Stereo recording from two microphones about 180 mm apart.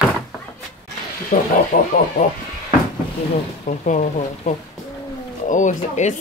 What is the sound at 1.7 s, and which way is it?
Speech, 60° left (ahead or behind).